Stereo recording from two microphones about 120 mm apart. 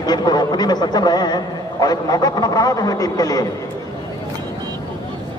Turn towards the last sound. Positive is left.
turn(degrees=30)  # may be behind; listen again after turning